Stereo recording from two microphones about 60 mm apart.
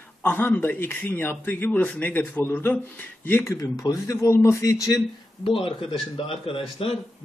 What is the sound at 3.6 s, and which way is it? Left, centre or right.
A man's voice, left.